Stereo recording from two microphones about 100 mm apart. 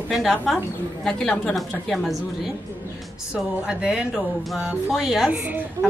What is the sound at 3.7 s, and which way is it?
A woman's voice, 5° right (ahead or behind).